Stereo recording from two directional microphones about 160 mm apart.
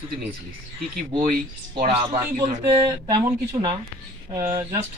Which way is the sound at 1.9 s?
40° right (ahead or behind).